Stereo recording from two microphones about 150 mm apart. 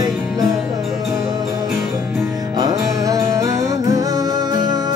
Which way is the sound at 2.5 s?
25° right (ahead or behind).